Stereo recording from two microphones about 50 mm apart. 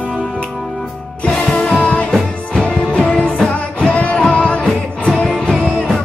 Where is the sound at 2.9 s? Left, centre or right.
Left.